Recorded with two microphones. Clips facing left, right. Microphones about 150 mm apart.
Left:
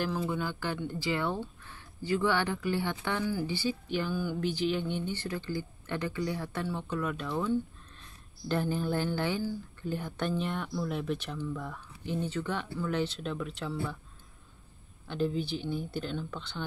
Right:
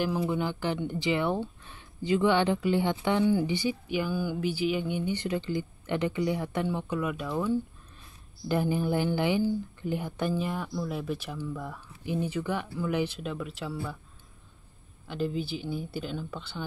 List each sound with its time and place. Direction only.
0.0 s speech: 15° right (ahead or behind)
15.0 s speech: 5° right (ahead or behind)